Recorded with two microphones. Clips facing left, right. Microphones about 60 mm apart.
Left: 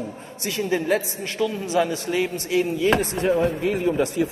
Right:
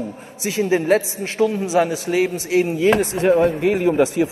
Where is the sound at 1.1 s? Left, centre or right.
Right.